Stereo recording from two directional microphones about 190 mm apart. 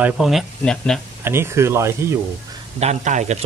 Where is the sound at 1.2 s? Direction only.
15° right (ahead or behind).